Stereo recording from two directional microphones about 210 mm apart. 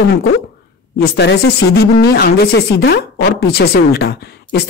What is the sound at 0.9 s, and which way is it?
Speech, 55° left (ahead or behind).